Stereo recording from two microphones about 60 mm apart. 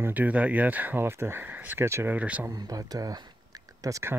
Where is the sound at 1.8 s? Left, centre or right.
Right.